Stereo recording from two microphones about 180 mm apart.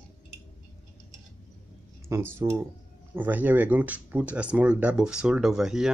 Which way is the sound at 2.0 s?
15° right (ahead or behind).